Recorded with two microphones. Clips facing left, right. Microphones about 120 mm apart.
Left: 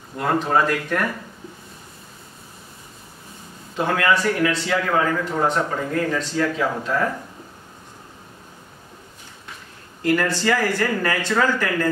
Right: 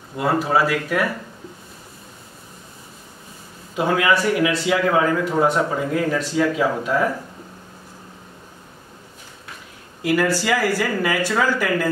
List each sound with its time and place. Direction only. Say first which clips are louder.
0.2 s speech: right 1 dB; 5° right (ahead or behind)
3.7 s speech: right 1 dB; 10° right (ahead or behind)
10.0 s speech: right 1 dB; 10° right (ahead or behind)